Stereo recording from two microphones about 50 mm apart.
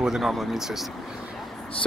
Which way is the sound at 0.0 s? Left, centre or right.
Centre.